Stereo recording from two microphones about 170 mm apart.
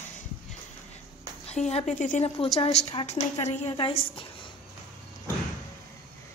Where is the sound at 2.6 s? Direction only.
40° left (ahead or behind).